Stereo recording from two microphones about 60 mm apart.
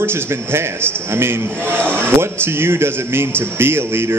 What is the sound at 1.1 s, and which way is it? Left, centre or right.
A man's voice, right.